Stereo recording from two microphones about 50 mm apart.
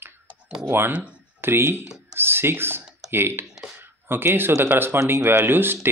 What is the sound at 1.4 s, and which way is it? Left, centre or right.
Speech, right.